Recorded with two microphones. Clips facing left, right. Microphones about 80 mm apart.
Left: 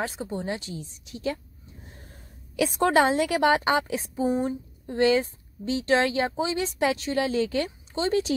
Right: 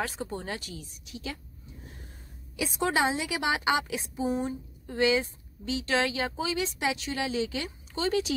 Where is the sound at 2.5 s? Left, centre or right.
Left.